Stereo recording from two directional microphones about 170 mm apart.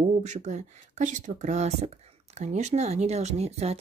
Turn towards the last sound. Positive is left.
turn(degrees=-40)  # may be behind; listen again after turning